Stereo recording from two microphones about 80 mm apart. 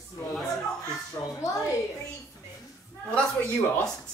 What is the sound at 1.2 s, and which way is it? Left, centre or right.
Speech, left.